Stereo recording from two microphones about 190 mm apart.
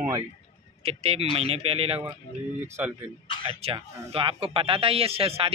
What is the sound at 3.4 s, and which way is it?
A man's voice, 30° right (ahead or behind).